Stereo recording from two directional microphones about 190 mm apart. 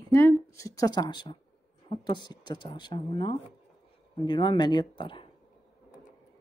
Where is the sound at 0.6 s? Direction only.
15° left (ahead or behind).